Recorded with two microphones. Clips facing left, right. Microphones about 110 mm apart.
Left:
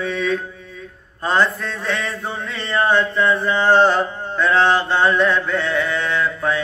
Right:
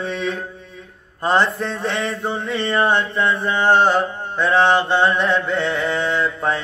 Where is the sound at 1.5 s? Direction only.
25° right (ahead or behind).